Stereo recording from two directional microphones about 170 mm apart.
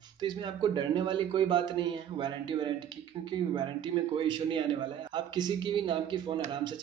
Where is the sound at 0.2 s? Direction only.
25° right (ahead or behind).